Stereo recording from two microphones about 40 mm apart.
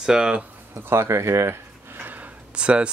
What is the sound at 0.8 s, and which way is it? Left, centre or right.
Speech, right.